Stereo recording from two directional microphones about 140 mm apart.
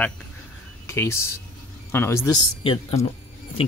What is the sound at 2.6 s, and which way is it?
Speech, 40° left (ahead or behind).